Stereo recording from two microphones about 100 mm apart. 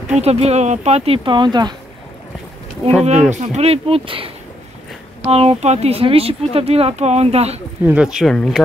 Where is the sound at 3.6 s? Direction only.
75° right (ahead or behind).